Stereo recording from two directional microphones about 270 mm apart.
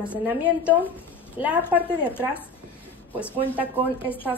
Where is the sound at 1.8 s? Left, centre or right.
Centre.